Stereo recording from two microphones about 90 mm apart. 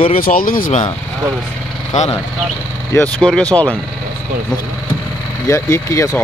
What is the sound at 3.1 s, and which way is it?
Speech, 10° left (ahead or behind).